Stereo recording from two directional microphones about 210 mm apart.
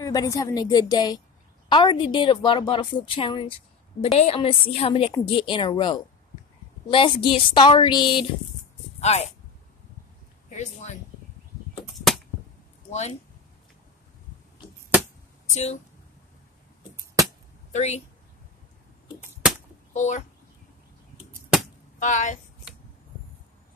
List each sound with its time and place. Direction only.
0.0 s a woman's voice: 15° left (ahead or behind); by 9.3 s 30° left (ahead or behind)
10.5 s speech: 35° left (ahead or behind)
11.8 s a sound: centre (ahead or behind)
15.4 s speech: 35° left (ahead or behind)
16.9 s a sound: 15° right (ahead or behind)
17.7 s speech: 30° left (ahead or behind)
19.0 s a sound: 5° right (ahead or behind)
19.9 s a child's voice: 35° left (ahead or behind)
22.0 s speech: 35° left (ahead or behind)